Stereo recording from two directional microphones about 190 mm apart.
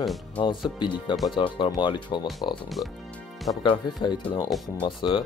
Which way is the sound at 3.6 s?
25° left (ahead or behind).